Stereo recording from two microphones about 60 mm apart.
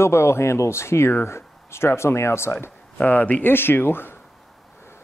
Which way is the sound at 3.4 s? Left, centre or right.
Left.